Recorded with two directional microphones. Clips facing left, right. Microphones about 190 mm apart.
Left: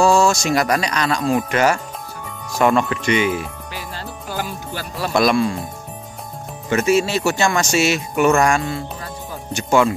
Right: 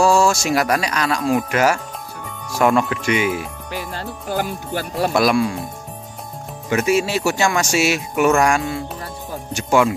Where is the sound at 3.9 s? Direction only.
50° right (ahead or behind).